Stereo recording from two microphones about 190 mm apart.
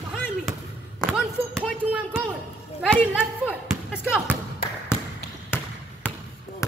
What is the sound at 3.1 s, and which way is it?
Speech, 5° right (ahead or behind).